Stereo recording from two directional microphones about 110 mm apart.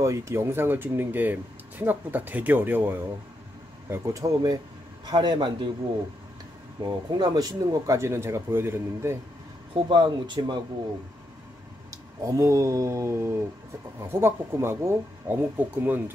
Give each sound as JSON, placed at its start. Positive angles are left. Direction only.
{"t": 0.0, "sound": "speech", "side_deg": -25}
{"t": 3.9, "sound": "speech", "side_deg": -30}
{"t": 6.8, "sound": "speech", "side_deg": -40}
{"t": 9.8, "sound": "speech", "side_deg": -45}
{"t": 11.9, "sound": "speech", "side_deg": -30}